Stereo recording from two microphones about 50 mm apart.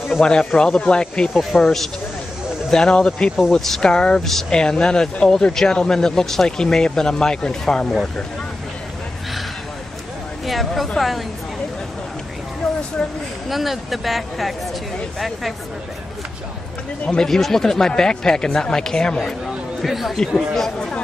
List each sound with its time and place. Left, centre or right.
0.1 s speech: centre
10.4 s speech: centre
13.5 s speech: centre
17.0 s speech: centre
17.3 s speech: centre
19.8 s speech: centre